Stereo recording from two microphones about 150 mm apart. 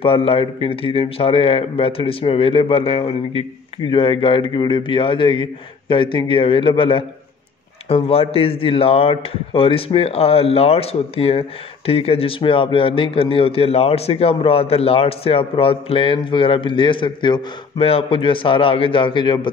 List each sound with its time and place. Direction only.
0.0 s a man's voice: 40° left (ahead or behind)